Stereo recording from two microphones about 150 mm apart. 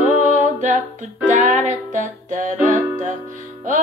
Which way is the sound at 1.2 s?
55° right (ahead or behind).